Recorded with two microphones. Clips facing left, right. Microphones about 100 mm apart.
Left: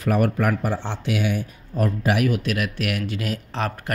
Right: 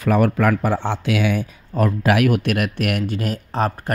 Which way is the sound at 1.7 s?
90° right.